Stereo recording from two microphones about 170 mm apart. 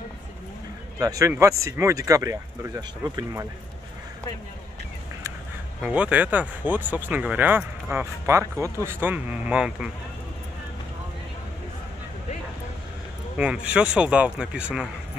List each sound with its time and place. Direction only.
0.9 s speech: 20° right (ahead or behind)
5.8 s speech: 5° right (ahead or behind)
13.4 s speech: 5° right (ahead or behind)